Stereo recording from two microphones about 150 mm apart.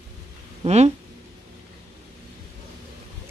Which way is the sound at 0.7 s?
45° right (ahead or behind).